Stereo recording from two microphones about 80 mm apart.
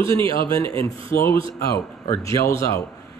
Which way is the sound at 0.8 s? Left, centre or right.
Left.